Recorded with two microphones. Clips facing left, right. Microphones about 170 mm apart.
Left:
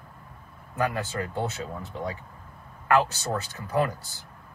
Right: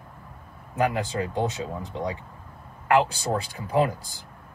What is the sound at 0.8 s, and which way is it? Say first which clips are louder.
Speech: right 3 dB; 15° right (ahead or behind).